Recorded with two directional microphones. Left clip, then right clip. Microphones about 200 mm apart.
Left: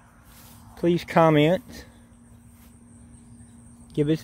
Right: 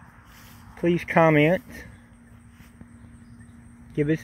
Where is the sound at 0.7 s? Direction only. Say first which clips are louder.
Even; 10° left (ahead or behind).